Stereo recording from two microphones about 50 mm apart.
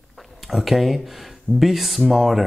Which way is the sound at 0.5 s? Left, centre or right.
Centre.